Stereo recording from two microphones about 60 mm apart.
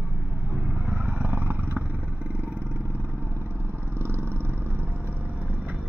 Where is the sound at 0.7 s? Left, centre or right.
Centre.